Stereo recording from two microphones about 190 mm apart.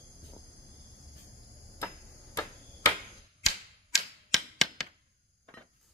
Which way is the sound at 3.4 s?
Centre (ahead or behind).